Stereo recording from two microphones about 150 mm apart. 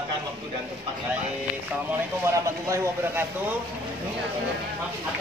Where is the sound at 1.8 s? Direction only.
20° right (ahead or behind).